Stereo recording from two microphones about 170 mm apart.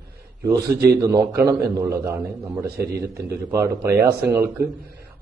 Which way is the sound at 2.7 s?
70° right (ahead or behind).